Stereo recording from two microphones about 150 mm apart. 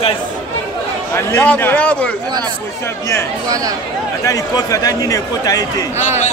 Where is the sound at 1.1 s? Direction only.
15° left (ahead or behind).